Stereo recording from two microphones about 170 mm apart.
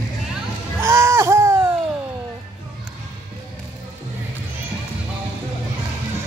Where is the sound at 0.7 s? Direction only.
15° right (ahead or behind).